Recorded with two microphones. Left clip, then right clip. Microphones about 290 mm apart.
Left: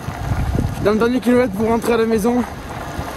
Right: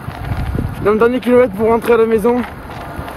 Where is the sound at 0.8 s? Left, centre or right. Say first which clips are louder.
Right 4 dB; centre.